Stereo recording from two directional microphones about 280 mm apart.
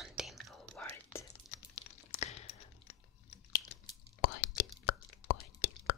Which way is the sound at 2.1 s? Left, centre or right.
Left.